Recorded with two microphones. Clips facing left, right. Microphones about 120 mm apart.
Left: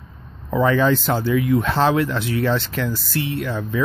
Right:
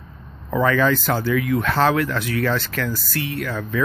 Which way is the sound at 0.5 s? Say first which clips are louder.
Left 1 dB; 20° left (ahead or behind).